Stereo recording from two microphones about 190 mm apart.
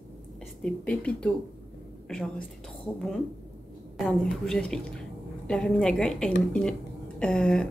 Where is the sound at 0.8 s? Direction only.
5° left (ahead or behind).